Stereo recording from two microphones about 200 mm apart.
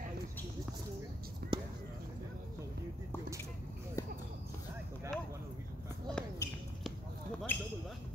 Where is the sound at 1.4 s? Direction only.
50° right (ahead or behind).